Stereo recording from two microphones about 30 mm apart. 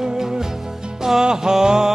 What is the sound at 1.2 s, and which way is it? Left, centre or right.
Music, right.